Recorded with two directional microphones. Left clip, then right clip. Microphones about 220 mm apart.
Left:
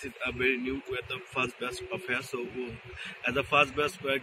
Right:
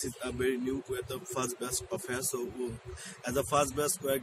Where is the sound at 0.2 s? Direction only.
10° right (ahead or behind).